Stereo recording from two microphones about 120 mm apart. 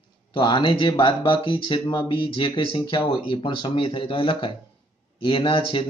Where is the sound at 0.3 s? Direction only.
40° left (ahead or behind).